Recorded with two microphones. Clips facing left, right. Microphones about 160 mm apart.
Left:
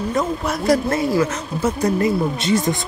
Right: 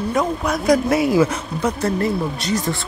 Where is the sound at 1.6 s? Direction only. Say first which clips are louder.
Left 2 dB; 15° left (ahead or behind).